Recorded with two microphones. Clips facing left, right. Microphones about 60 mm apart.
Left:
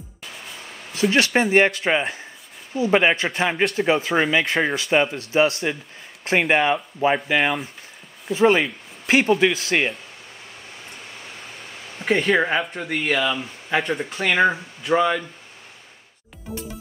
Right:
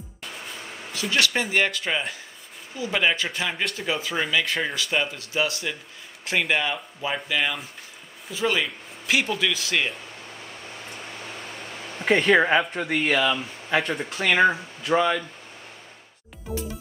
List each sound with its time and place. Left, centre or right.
1.1 s speech: left
12.0 s speech: centre